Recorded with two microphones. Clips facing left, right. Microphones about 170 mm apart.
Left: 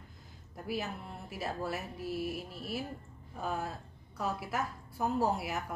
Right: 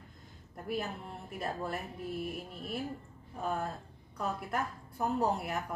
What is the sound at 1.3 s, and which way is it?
A woman's voice, 5° left (ahead or behind).